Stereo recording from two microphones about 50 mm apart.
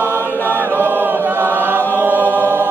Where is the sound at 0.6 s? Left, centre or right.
Right.